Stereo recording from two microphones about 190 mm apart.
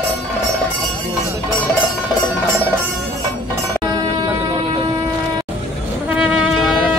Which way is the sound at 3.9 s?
20° right (ahead or behind).